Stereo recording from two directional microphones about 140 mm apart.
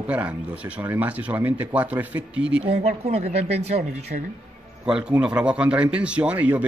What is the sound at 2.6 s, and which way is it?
Speech, 50° right (ahead or behind).